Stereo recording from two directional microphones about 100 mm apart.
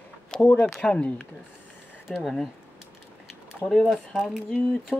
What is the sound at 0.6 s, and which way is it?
Speech, 10° left (ahead or behind).